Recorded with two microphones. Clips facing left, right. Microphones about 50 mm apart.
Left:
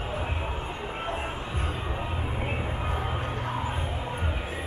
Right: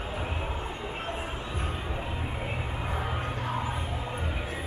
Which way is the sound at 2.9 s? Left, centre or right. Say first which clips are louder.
Left 1 dB; centre.